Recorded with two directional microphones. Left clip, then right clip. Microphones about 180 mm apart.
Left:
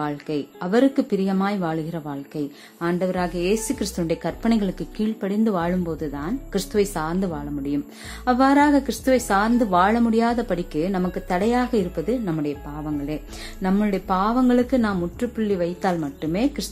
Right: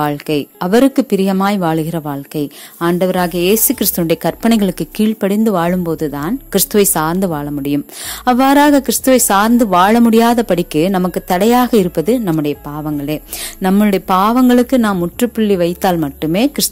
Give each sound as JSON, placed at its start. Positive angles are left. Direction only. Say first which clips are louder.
{"t": 0.0, "sound": "a woman's voice", "louder": "right 10 dB", "side_deg": -50}